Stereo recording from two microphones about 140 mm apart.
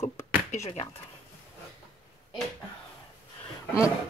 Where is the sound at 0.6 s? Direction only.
45° left (ahead or behind).